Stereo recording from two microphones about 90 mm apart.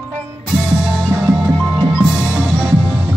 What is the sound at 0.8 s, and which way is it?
Music, 5° right (ahead or behind).